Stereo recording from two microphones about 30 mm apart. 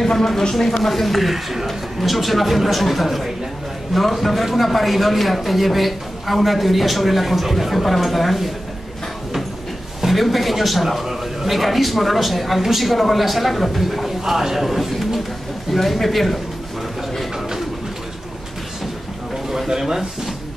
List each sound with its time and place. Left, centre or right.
0.0 s a man's voice: centre
10.0 s a man's voice: centre
19.7 s a man's voice: centre